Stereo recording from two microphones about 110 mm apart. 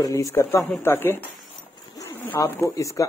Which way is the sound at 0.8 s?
20° left (ahead or behind).